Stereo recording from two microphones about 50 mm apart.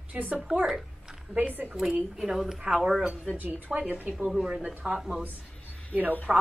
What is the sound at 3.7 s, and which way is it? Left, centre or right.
Speech, right.